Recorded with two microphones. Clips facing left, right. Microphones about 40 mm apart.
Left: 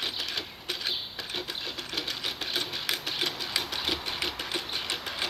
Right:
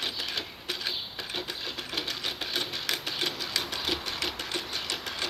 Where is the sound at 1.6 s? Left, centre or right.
Centre.